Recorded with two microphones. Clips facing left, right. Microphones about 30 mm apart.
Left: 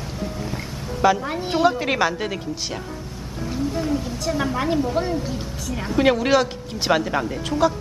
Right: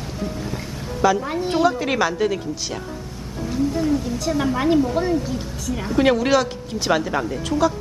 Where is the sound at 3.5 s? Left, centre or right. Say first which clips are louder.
Right 3 dB; centre.